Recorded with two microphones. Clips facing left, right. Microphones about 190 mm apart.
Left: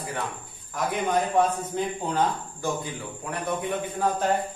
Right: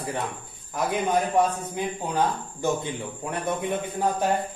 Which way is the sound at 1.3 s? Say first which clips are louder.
Even; 10° right (ahead or behind).